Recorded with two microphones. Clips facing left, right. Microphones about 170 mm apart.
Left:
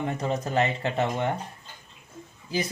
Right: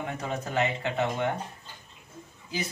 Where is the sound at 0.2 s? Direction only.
35° left (ahead or behind).